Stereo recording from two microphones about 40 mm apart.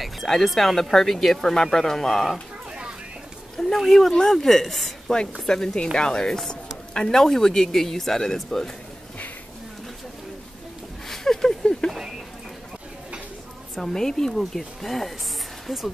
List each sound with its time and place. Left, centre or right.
0.0 s a sound: centre
0.6 s speech: centre
3.5 s speech: centre
5.5 s speech: centre
11.1 s a sound: centre
13.7 s speech: centre